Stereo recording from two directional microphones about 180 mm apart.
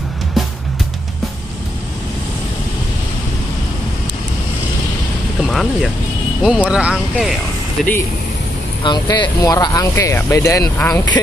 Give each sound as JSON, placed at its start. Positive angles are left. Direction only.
{"t": 5.4, "sound": "music", "side_deg": 0}
{"t": 6.4, "sound": "speech", "side_deg": -5}
{"t": 8.8, "sound": "speech", "side_deg": 25}